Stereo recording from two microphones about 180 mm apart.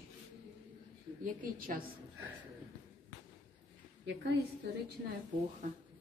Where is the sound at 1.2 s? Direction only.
50° right (ahead or behind).